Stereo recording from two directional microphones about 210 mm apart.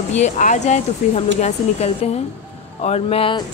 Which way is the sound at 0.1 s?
35° left (ahead or behind).